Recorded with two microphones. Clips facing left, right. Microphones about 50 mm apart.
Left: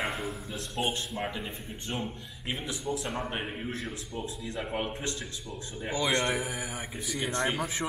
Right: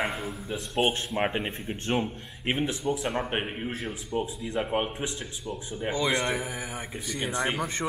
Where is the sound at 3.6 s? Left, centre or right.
Right.